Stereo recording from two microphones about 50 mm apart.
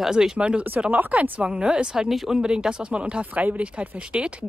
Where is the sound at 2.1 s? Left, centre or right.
Centre.